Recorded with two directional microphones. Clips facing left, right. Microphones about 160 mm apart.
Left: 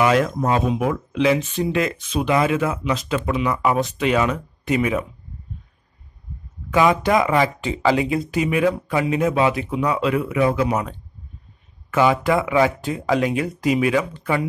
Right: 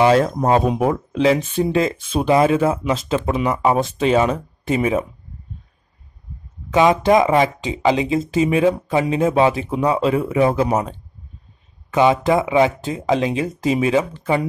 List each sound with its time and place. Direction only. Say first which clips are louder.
0.0 s speech: right 3 dB; 30° right (ahead or behind)
6.7 s speech: right 3 dB; 25° right (ahead or behind)